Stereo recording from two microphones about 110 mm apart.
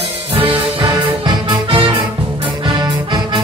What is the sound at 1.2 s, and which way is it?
Music, 45° right (ahead or behind).